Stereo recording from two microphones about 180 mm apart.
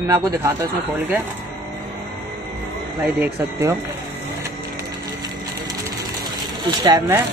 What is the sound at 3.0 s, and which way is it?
Speech, 10° right (ahead or behind).